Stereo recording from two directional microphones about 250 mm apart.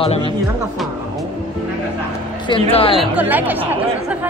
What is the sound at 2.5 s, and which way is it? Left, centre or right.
Speech, left.